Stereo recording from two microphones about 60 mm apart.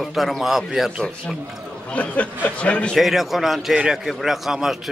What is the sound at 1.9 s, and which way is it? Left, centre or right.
Speech, left.